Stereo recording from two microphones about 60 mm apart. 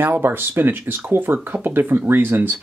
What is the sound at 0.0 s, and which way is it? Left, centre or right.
Speech, right.